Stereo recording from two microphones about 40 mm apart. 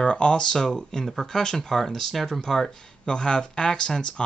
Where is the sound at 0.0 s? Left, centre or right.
Left; by 2.8 s centre.